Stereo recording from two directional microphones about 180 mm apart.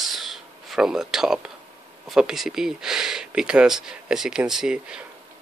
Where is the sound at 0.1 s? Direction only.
Centre (ahead or behind).